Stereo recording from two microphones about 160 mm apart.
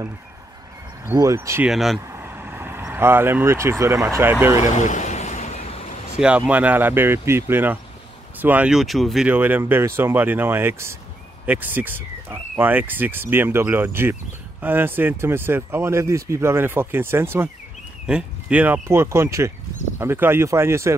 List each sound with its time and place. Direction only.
1.1 s speech: 20° right (ahead or behind)
1.7 s speech: centre (ahead or behind)
2.1 s speech: 15° right (ahead or behind)
4.7 s vehicle: 50° left (ahead or behind)
6.1 s speech: 5° right (ahead or behind)
9.3 s speech: 10° right (ahead or behind)